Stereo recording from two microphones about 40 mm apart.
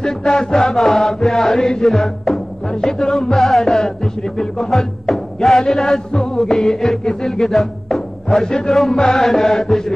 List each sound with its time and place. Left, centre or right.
0.0 s music: centre
5.7 s speech: centre
6.1 s music: centre
6.4 s speech: centre
8.3 s music: centre